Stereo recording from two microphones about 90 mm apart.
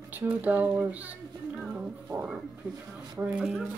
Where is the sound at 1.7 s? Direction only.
15° right (ahead or behind).